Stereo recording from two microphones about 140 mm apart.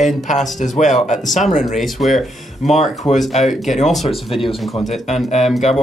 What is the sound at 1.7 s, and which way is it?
Speech, centre (ahead or behind).